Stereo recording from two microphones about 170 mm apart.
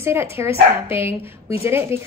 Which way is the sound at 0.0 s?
15° right (ahead or behind).